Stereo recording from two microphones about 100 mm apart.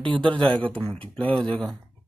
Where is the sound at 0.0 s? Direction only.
55° right (ahead or behind).